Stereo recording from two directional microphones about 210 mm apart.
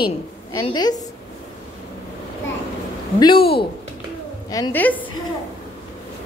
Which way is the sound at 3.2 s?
25° left (ahead or behind).